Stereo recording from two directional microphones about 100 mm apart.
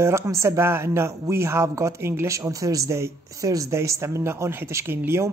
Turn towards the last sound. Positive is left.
turn(degrees=-25)  # may be behind; listen again after turning